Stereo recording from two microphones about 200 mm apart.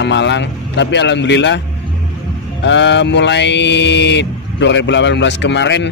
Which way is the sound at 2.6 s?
65° left (ahead or behind).